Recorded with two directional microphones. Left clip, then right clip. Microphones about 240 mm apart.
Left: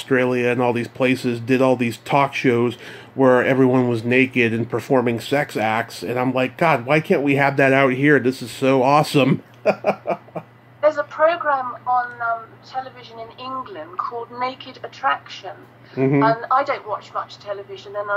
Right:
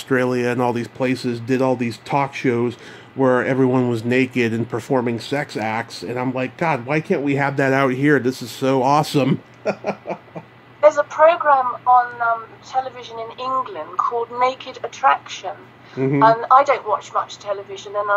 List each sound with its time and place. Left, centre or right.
0.1 s speech: centre
10.8 s a woman's voice: right